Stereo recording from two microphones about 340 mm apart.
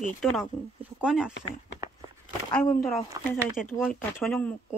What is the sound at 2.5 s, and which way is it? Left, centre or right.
Speech, centre.